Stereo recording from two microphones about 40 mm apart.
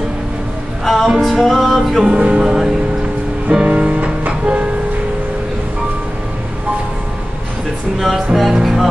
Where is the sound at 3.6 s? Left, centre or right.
Right.